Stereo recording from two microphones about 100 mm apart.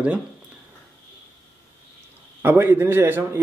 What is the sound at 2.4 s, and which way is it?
A man's voice, 20° right (ahead or behind).